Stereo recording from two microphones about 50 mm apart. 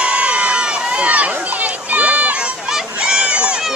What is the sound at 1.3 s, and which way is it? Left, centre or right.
Run, right.